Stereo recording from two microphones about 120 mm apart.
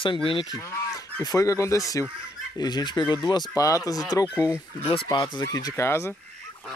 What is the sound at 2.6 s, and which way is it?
Speech, 35° left (ahead or behind).